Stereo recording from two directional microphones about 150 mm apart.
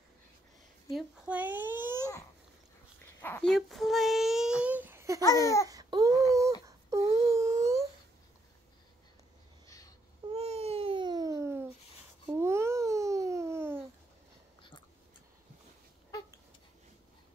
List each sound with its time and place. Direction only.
0.9 s speech: 10° right (ahead or behind)
3.2 s speech: 15° left (ahead or behind)
3.4 s child singing: centre (ahead or behind); by 5.2 s 20° right (ahead or behind)
5.7 s baby cry: 25° right (ahead or behind)
6.6 s wail: 20° right (ahead or behind)
10.3 s babbling: 40° right (ahead or behind); by 13.8 s 15° right (ahead or behind)